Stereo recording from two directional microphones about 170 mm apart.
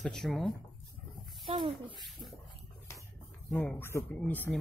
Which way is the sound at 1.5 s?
30° right (ahead or behind).